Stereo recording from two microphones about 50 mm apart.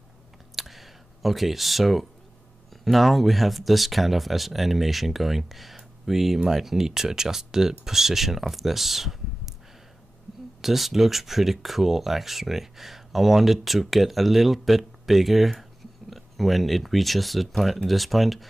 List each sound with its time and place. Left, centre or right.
0.6 s a sound: centre
2.7 s speech: centre
10.6 s speech: centre